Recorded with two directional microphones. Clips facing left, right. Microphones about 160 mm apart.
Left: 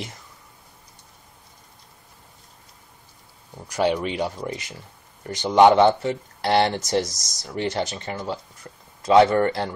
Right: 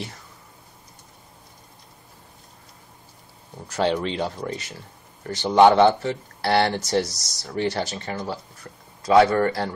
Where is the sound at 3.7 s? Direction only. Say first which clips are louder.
Left 1 dB; 15° left (ahead or behind).